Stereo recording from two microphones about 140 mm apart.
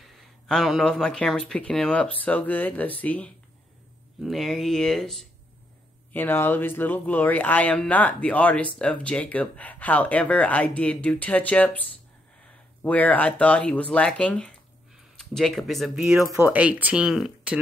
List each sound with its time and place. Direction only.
0.0 s speech: centre (ahead or behind)
6.1 s speech: 15° left (ahead or behind); by 17.6 s 5° right (ahead or behind)